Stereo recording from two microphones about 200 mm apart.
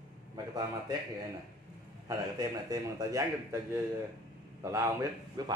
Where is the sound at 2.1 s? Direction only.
15° right (ahead or behind).